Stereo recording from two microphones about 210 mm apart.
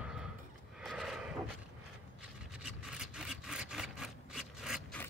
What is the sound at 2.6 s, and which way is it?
Rub, 5° right (ahead or behind).